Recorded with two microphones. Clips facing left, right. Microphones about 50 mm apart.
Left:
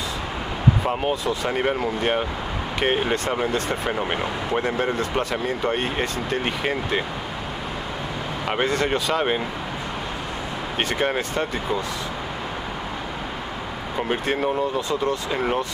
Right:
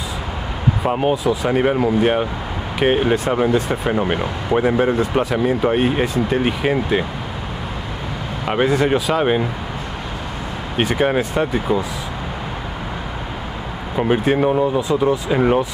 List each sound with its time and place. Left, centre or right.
0.8 s speech: centre
8.5 s speech: centre
10.8 s speech: centre
13.9 s speech: centre